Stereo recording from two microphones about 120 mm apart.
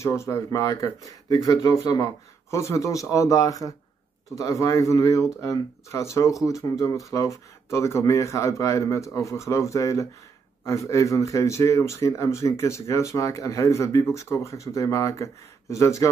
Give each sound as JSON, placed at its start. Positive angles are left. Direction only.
{"t": 0.0, "sound": "speech", "side_deg": 25}